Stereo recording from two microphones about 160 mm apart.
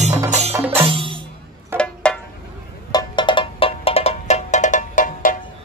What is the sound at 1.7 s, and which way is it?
Music, 15° right (ahead or behind).